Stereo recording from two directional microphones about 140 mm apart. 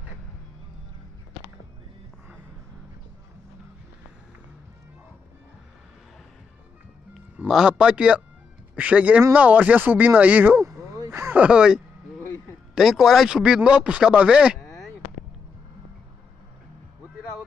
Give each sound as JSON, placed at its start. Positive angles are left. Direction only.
{"t": 7.3, "sound": "speech", "side_deg": -5}
{"t": 11.0, "sound": "a sound", "side_deg": -15}
{"t": 12.7, "sound": "speech", "side_deg": 0}